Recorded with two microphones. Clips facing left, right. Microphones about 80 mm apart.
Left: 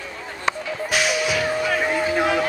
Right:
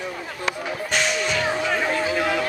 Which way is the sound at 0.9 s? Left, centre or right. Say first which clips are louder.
Left 2 dB; centre.